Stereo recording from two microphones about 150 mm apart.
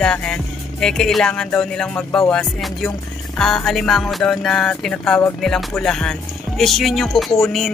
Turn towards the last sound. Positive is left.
turn(degrees=0)  # may be behind; listen again after turning